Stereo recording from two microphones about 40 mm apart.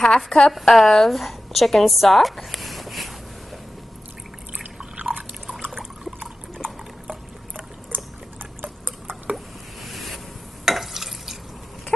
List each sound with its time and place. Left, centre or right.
0.0 s a woman's voice: centre
4.9 s a sound: right
9.8 s boat: centre
10.6 s stir: centre